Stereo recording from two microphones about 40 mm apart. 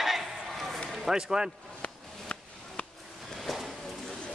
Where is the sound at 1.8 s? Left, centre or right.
Left.